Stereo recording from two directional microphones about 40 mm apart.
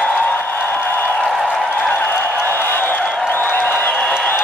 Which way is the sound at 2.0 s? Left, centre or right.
Left.